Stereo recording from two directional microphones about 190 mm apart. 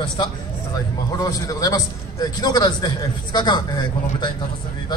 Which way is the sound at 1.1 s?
20° left (ahead or behind).